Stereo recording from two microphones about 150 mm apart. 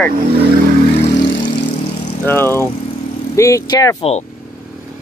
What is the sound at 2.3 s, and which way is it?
Speech, 15° left (ahead or behind).